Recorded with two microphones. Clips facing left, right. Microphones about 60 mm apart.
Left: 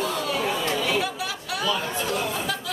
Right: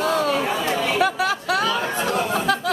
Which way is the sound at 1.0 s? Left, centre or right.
Right.